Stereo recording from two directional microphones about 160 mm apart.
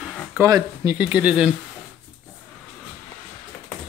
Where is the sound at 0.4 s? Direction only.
20° right (ahead or behind).